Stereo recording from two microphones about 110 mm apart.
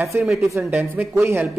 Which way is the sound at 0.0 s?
20° right (ahead or behind).